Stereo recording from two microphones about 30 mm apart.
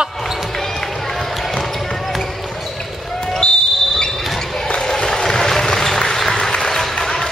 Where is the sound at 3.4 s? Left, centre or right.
Left.